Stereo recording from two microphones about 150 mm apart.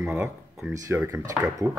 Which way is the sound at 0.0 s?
10° right (ahead or behind).